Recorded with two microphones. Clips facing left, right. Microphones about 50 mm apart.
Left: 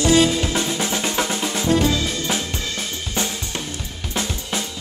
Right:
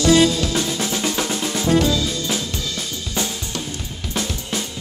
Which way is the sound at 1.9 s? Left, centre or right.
Left.